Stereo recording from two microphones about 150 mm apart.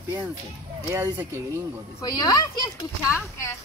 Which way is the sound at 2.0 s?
25° left (ahead or behind).